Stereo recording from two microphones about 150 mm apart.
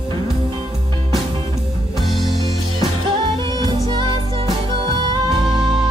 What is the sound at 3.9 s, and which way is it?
Music, 30° right (ahead or behind).